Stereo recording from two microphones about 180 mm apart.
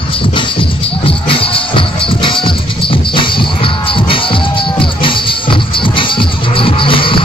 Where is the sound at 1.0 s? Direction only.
30° left (ahead or behind).